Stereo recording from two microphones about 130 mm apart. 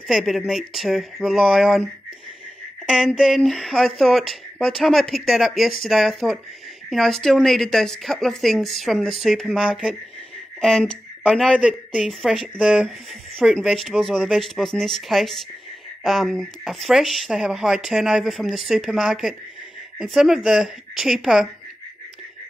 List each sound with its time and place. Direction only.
0.1 s speech: centre (ahead or behind)
3.2 s speech: centre (ahead or behind)
11.5 s speech: 10° right (ahead or behind)